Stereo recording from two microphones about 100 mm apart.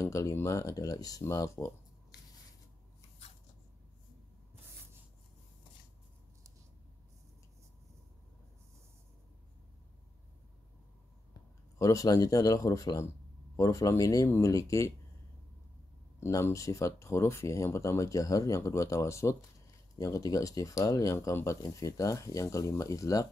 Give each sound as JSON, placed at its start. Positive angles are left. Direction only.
{"t": 0.0, "sound": "speech", "side_deg": 30}
{"t": 11.8, "sound": "speech", "side_deg": 35}
{"t": 16.2, "sound": "speech", "side_deg": 30}